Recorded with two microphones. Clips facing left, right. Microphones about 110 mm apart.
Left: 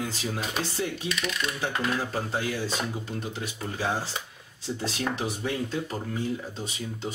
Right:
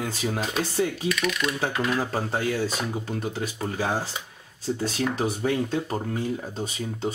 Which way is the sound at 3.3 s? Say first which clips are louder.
Right 5 dB; 40° right (ahead or behind).